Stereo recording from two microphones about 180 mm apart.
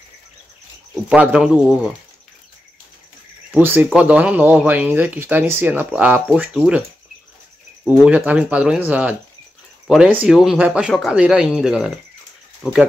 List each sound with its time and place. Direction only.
1.0 s speech: 5° right (ahead or behind)
3.5 s speech: 10° right (ahead or behind)
7.9 s speech: 10° right (ahead or behind)